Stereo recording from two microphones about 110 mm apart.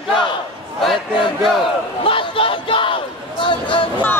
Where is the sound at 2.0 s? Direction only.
55° left (ahead or behind).